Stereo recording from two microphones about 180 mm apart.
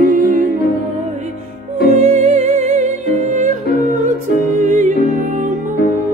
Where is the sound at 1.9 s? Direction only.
40° right (ahead or behind).